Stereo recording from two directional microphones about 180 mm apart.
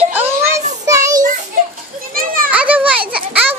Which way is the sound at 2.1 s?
50° right (ahead or behind).